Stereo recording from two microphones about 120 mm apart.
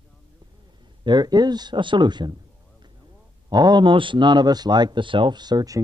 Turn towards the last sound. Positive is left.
turn(degrees=-30)  # may be behind; listen again after turning